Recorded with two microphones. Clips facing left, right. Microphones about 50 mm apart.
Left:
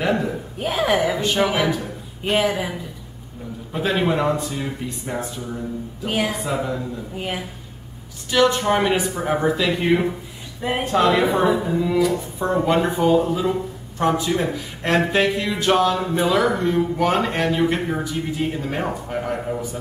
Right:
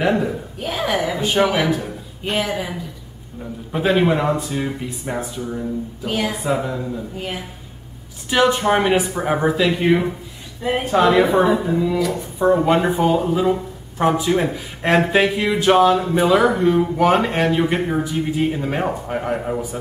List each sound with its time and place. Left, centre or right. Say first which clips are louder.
0.0 s speech: right 3 dB; centre
0.6 s speech: left 2 dB; centre
1.1 s a woman's voice: right 2 dB; centre
2.2 s speech: left 2 dB; centre
3.7 s speech: right 4 dB; centre
6.0 s speech: even; centre
6.4 s a woman's voice: right 3 dB; centre
8.3 s a man's voice: right 1 dB; centre